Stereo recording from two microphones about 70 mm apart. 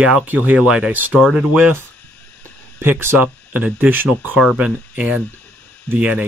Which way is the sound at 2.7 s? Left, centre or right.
Right.